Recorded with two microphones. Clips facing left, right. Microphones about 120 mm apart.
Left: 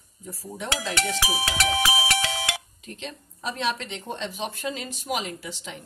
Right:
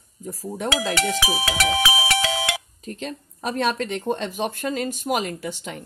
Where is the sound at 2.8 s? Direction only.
45° right (ahead or behind).